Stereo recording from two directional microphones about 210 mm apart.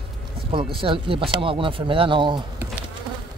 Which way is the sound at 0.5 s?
25° right (ahead or behind).